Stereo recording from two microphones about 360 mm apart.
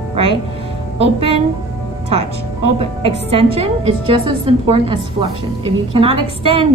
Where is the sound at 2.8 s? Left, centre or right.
Centre.